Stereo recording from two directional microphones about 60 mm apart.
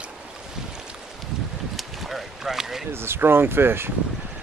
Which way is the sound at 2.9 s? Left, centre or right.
Right.